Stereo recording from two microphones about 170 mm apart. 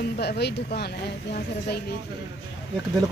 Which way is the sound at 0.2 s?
75° left (ahead or behind).